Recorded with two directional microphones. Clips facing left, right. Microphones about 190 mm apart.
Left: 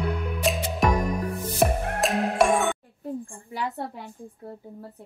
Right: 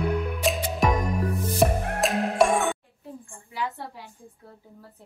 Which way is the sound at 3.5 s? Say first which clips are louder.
Left 2 dB; 55° left (ahead or behind).